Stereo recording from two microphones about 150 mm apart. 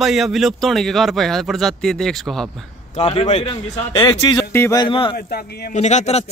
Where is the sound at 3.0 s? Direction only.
40° left (ahead or behind).